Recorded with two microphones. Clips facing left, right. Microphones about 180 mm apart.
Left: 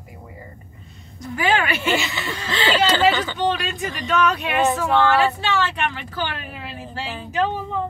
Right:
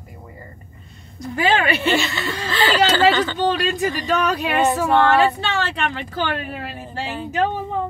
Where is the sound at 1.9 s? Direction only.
15° left (ahead or behind).